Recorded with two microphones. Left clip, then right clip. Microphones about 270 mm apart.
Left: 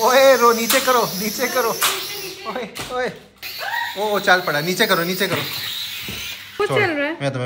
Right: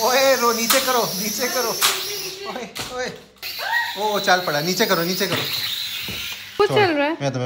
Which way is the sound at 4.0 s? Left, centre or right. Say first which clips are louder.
Left 4 dB; centre.